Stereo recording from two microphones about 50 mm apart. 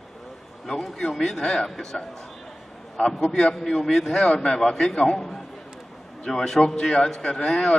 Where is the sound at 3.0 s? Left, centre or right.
Centre.